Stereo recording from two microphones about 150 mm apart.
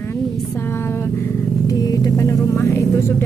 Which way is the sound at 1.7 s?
25° left (ahead or behind).